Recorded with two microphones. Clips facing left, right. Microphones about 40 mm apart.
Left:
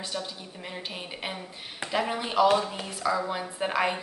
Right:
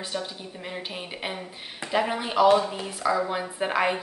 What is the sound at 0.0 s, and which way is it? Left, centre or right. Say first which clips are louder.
A woman's voice: right 2 dB; centre.